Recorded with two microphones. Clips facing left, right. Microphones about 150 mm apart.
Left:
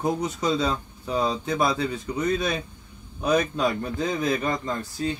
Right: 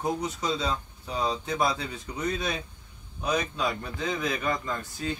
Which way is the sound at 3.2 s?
50° left (ahead or behind).